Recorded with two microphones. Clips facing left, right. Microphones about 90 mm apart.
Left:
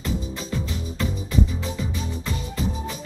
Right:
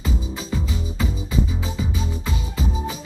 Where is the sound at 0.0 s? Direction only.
10° right (ahead or behind).